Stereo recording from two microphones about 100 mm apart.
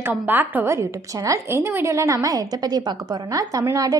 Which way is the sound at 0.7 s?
30° right (ahead or behind).